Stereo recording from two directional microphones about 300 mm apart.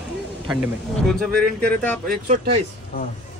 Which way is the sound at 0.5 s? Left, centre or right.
Centre.